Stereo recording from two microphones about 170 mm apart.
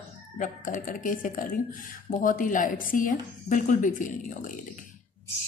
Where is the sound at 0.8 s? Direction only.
50° left (ahead or behind).